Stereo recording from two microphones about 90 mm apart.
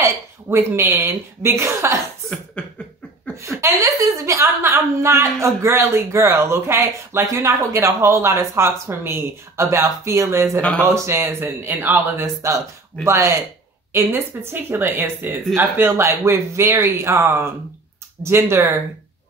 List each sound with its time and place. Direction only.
0.0 s a woman's voice: 30° right (ahead or behind)
2.6 s beatboxing: 15° left (ahead or behind)
3.3 s a woman's voice: 30° right (ahead or behind)
12.4 s a woman's voice: 35° right (ahead or behind)